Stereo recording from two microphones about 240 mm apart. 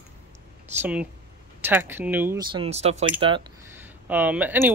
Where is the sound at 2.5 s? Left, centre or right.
Right.